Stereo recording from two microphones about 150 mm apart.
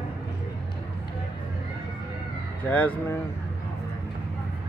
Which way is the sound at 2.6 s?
10° left (ahead or behind).